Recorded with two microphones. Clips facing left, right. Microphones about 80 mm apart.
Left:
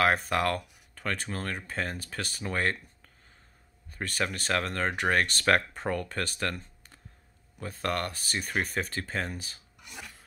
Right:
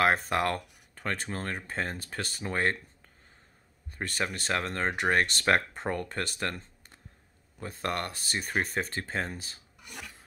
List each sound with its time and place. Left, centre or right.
0.0 s speech: right
3.9 s speech: right